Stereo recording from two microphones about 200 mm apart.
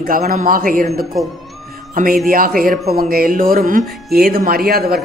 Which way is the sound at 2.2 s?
45° right (ahead or behind).